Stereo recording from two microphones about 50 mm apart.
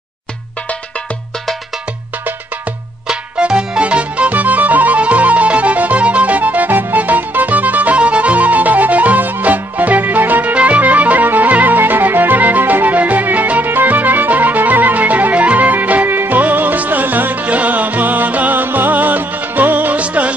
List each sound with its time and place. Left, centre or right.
3.1 s music: centre